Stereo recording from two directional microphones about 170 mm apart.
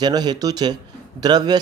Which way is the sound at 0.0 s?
25° right (ahead or behind).